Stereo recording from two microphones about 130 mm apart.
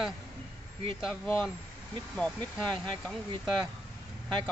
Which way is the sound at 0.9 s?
Centre (ahead or behind).